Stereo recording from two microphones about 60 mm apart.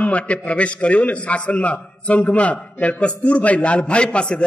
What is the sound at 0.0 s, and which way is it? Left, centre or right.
A man's voice, left.